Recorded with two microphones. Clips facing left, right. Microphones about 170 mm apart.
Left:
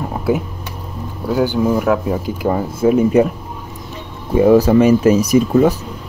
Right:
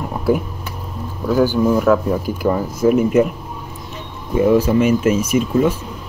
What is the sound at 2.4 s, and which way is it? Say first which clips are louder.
Speech: left 1 dB; 30° left (ahead or behind).